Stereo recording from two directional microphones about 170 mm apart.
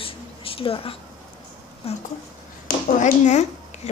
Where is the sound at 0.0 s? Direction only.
35° left (ahead or behind).